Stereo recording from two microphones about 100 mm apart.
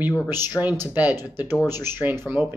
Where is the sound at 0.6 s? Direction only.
15° right (ahead or behind).